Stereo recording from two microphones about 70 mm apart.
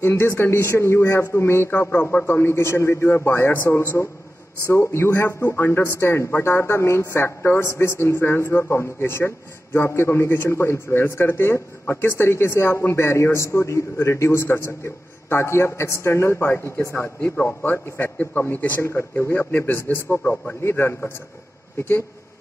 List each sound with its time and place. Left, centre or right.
0.0 s speech: left
17.2 s a man's voice: left
18.8 s speech: left
20.6 s speech: left